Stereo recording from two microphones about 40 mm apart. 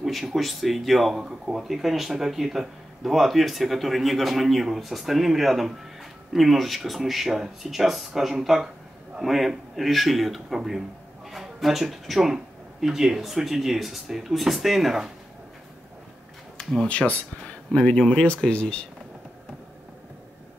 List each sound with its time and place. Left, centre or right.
0.0 s speech: centre
16.5 s a sound: centre
16.9 s speech: left
17.7 s speech: left